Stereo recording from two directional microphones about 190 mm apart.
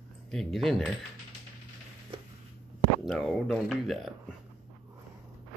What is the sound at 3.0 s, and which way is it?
Speech, centre (ahead or behind).